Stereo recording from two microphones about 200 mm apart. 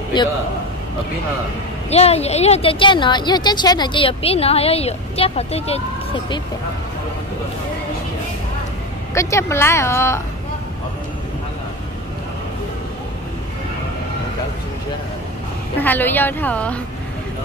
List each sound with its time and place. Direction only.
1.9 s a woman's voice: 30° left (ahead or behind)
9.1 s a woman's voice: 15° left (ahead or behind)
15.8 s a woman's voice: 10° left (ahead or behind)